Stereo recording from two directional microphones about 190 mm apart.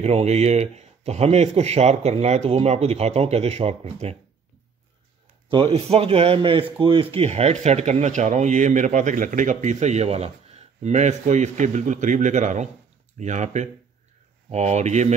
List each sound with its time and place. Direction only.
0.0 s speech: 35° right (ahead or behind)
5.5 s speech: 30° right (ahead or behind)